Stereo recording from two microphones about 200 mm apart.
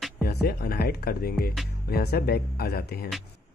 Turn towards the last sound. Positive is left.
turn(degrees=50)  # may be behind; listen again after turning